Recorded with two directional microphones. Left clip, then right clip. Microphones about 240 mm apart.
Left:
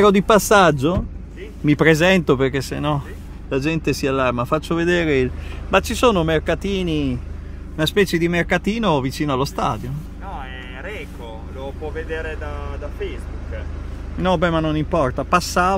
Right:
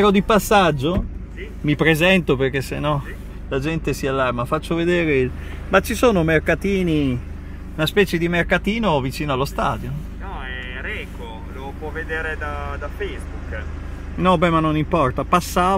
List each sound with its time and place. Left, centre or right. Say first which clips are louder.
0.0 s speech: left 2 dB; left
5.7 s speech: even; centre
11.9 s speech: right 4 dB; centre
14.2 s speech: right 2 dB; centre